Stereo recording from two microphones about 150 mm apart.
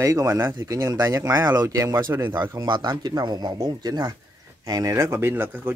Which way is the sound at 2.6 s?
30° right (ahead or behind).